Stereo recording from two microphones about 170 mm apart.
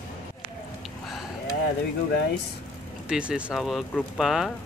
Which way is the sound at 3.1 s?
5° right (ahead or behind).